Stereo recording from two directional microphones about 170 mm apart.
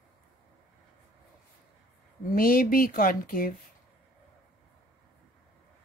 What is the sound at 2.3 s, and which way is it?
Speech, 55° left (ahead or behind).